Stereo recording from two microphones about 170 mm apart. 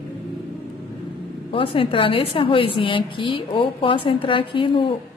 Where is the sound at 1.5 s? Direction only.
30° left (ahead or behind).